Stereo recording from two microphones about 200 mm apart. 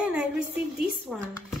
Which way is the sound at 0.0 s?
5° right (ahead or behind).